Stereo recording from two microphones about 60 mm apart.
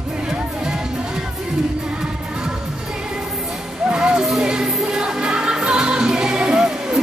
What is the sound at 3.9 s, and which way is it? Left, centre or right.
Music, centre.